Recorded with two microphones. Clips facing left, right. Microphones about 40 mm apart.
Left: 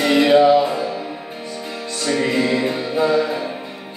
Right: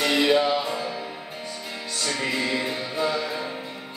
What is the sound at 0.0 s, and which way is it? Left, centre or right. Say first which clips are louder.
Music: left 7 dB; centre.